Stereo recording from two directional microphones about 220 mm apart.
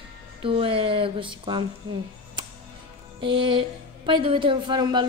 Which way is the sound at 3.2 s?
20° right (ahead or behind).